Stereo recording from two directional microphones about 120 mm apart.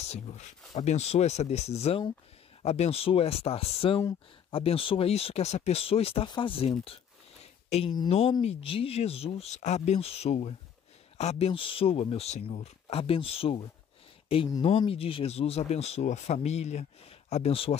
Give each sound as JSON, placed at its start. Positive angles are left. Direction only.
{"t": 0.0, "sound": "speech", "side_deg": 65}
{"t": 6.2, "sound": "speech", "side_deg": 45}
{"t": 7.7, "sound": "speech", "side_deg": 65}
{"t": 8.1, "sound": "speech", "side_deg": 50}